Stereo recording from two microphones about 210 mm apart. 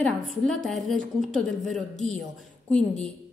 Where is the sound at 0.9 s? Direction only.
40° right (ahead or behind).